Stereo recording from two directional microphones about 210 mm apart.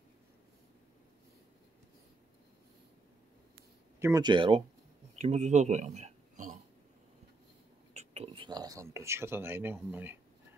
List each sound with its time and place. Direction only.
4.0 s speech: 20° right (ahead or behind)
5.1 s a sound: 30° right (ahead or behind)
7.9 s speech: 30° right (ahead or behind); by 10.1 s 10° right (ahead or behind)